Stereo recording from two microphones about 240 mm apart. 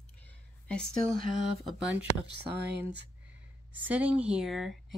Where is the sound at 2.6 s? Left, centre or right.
Right.